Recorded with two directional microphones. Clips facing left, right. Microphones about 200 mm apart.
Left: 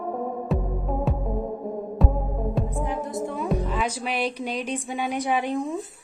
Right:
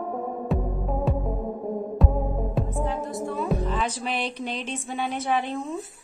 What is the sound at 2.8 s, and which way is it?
Music, 20° left (ahead or behind).